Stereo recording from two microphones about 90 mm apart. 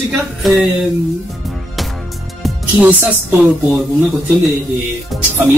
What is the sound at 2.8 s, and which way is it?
Speech, 25° right (ahead or behind).